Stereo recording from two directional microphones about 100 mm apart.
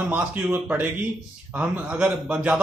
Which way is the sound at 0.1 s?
20° right (ahead or behind).